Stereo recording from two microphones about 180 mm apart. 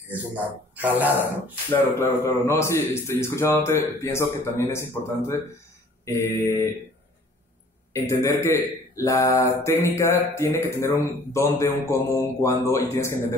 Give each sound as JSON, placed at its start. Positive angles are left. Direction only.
{"t": 0.7, "sound": "speech", "side_deg": -10}
{"t": 1.7, "sound": "mantra", "side_deg": 15}
{"t": 7.9, "sound": "mantra", "side_deg": 15}